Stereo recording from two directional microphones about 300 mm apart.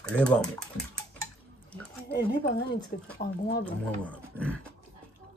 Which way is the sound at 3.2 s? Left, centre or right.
Left.